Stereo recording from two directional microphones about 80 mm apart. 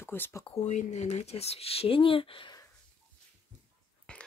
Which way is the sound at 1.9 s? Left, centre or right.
Left.